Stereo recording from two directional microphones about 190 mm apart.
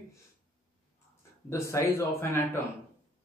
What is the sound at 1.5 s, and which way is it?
Speech, 15° left (ahead or behind).